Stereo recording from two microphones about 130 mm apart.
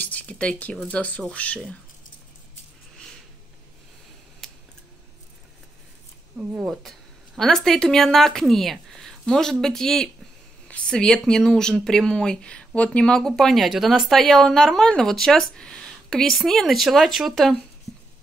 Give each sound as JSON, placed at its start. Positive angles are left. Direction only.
{"t": 0.0, "sound": "a sound", "side_deg": 10}
{"t": 0.9, "sound": "speech", "side_deg": 10}
{"t": 4.4, "sound": "scissors", "side_deg": 0}
{"t": 6.3, "sound": "speech", "side_deg": -5}